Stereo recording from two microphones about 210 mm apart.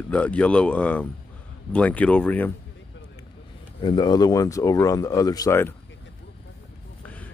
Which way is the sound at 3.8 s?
20° left (ahead or behind).